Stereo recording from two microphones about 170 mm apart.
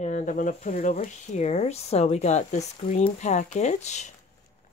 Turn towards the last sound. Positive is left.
turn(degrees=40)  # may be behind; listen again after turning